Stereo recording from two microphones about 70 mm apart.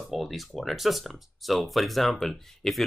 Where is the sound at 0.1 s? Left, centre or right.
Centre.